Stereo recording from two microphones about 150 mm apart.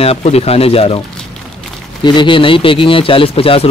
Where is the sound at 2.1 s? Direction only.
35° left (ahead or behind).